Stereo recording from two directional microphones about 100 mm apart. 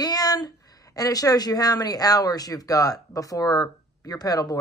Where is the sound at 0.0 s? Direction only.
40° left (ahead or behind).